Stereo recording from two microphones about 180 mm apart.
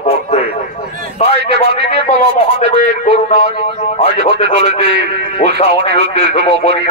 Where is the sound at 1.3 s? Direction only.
65° right (ahead or behind).